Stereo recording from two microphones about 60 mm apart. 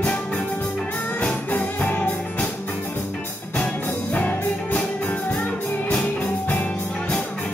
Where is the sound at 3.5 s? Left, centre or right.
Left.